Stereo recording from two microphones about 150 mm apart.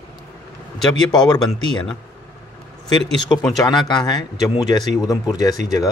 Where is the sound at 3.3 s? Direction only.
25° left (ahead or behind).